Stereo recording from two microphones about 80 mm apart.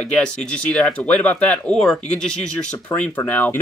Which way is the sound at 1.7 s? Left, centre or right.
Centre.